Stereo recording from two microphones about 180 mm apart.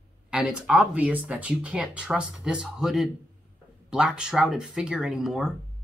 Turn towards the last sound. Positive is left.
turn(degrees=0)  # may be behind; listen again after turning